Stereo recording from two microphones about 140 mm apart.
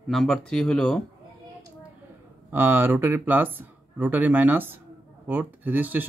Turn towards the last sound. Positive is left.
turn(degrees=-15)  # may be behind; listen again after turning